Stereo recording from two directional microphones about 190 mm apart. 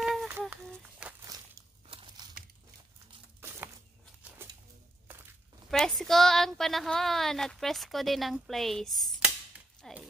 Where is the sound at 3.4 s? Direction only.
10° right (ahead or behind).